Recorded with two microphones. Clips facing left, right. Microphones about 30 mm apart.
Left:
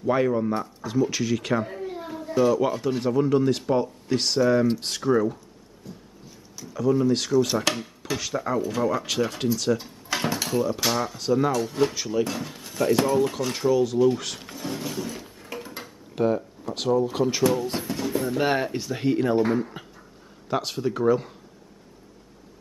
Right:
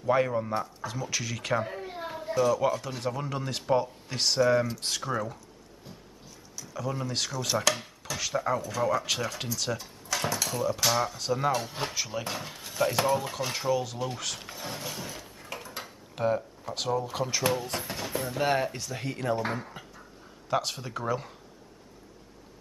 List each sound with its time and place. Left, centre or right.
0.0 s speech: centre
1.8 s a sound: centre
2.3 s speech: centre
5.9 s music: centre
6.7 s speech: centre
10.0 s dishes: left
10.5 s speech: centre
14.5 s a sound: centre
15.8 s speech: centre
17.4 s speech: centre
17.8 s music: centre
18.4 s speech: centre
19.8 s a sound: centre
20.4 s speech: centre